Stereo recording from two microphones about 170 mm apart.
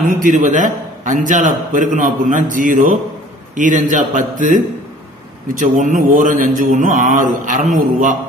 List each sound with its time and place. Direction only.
0.0 s a man's voice: 45° right (ahead or behind)